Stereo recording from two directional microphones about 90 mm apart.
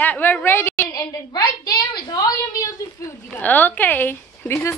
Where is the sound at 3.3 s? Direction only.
20° left (ahead or behind).